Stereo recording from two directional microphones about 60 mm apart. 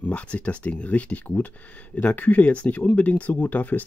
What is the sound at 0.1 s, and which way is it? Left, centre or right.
Speech, left.